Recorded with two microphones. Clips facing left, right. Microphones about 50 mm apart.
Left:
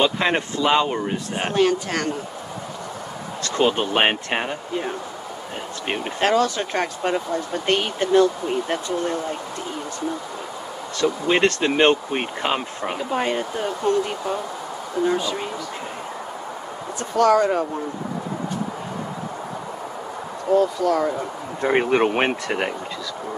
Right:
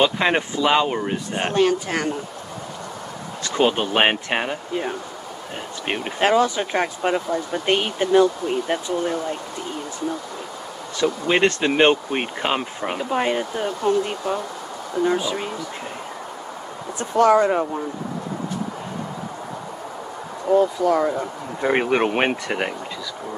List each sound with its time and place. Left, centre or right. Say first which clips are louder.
0.0 s speech: right 1 dB; centre
1.4 s speech: even; centre
3.4 s speech: even; centre
11.2 s speech: even; centre
17.2 s speech: right 1 dB; centre
20.5 s speech: right 1 dB; centre